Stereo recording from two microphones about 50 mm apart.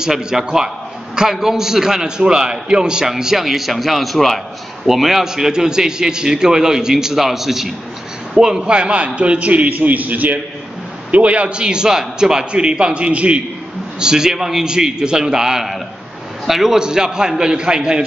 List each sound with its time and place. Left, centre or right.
0.0 s a man's voice: centre
13.9 s a man's voice: centre